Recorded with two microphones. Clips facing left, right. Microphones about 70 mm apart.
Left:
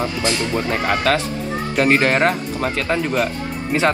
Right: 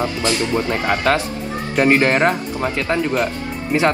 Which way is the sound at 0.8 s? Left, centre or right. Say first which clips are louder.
Even; right.